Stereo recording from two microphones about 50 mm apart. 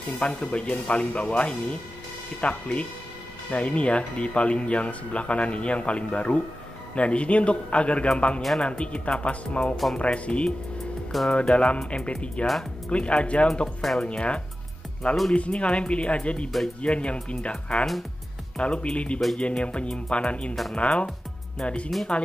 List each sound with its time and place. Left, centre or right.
0.2 s speech: left
13.7 s speech: centre
14.0 s speech: left